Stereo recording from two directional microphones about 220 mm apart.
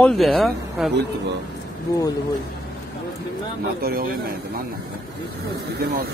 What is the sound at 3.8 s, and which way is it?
Speech, 45° right (ahead or behind).